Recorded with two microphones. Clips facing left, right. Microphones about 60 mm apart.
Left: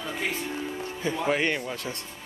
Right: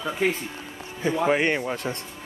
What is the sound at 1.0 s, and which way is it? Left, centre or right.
Speech, right.